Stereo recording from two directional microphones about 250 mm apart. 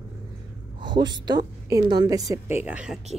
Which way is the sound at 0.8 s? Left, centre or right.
Centre.